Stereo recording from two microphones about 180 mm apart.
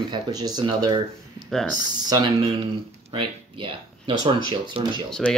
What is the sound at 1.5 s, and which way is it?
Speech, centre (ahead or behind).